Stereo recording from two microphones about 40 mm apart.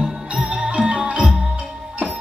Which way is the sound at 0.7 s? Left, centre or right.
Right.